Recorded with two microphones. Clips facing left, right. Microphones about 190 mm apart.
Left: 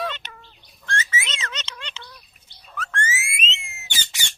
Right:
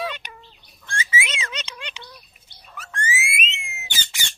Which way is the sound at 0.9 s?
10° right (ahead or behind).